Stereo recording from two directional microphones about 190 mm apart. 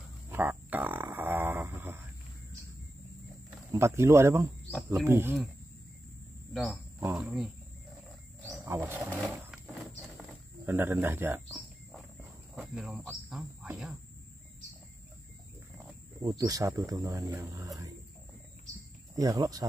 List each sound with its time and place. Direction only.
0.3 s livestock: 10° right (ahead or behind)
3.7 s speech: 15° right (ahead or behind)
6.5 s speech: centre (ahead or behind)
8.6 s a sound: 10° right (ahead or behind)
12.2 s speech: 5° right (ahead or behind)
16.2 s speech: 20° right (ahead or behind)
19.1 s speech: 20° right (ahead or behind)